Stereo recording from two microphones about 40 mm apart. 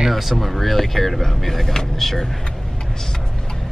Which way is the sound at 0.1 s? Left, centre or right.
Centre.